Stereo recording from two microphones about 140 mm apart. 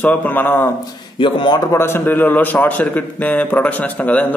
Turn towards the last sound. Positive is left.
turn(degrees=10)  # may be behind; listen again after turning